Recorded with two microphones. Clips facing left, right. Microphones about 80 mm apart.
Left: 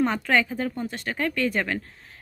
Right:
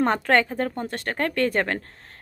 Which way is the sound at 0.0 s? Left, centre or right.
Right.